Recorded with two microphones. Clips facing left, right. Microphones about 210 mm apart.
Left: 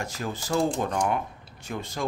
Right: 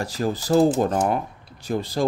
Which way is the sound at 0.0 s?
35° right (ahead or behind).